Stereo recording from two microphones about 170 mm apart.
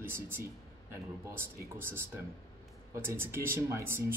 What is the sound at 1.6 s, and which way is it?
Speech, 15° right (ahead or behind).